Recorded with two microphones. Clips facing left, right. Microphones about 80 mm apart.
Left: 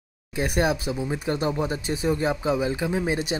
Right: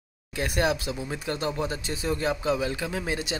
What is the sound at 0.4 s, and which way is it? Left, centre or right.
Speech, centre.